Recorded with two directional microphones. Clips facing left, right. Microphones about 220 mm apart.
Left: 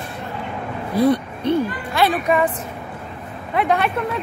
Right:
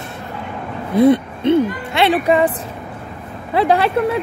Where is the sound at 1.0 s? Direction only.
20° right (ahead or behind).